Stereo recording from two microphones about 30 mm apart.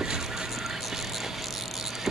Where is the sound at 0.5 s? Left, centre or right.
Centre.